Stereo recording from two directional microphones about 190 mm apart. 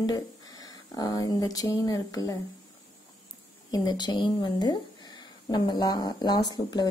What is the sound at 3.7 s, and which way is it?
Speech, 20° left (ahead or behind).